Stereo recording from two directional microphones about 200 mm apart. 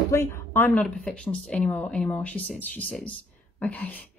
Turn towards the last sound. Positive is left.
turn(degrees=10)  # may be behind; listen again after turning